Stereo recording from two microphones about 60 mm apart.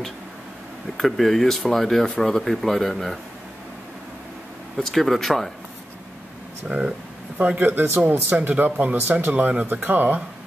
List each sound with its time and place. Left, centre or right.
0.9 s speech: centre
4.7 s speech: centre
6.7 s speech: right